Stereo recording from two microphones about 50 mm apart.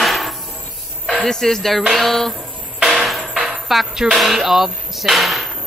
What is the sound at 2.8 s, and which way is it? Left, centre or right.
Music, centre.